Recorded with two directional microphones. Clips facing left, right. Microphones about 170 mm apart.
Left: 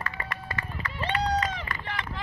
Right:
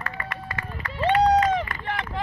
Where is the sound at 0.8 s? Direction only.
50° right (ahead or behind).